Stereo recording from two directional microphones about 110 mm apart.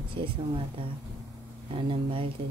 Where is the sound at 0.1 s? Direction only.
50° right (ahead or behind).